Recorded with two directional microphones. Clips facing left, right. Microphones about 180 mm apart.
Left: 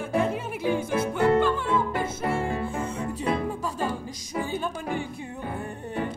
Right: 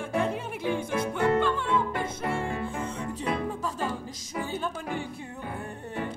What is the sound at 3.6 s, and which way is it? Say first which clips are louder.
Music: left 2 dB; 10° left (ahead or behind).